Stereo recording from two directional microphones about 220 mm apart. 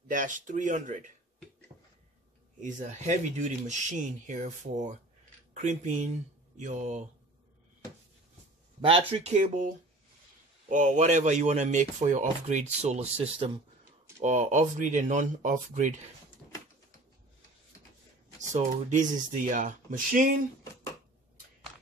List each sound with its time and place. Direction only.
0.1 s speech: 35° right (ahead or behind)
2.6 s speech: 35° right (ahead or behind)
8.8 s speech: 25° right (ahead or behind)
10.7 s speech: 35° right (ahead or behind)
18.5 s speech: 35° right (ahead or behind)